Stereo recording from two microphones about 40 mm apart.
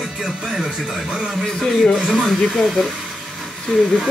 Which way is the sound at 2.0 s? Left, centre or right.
Centre.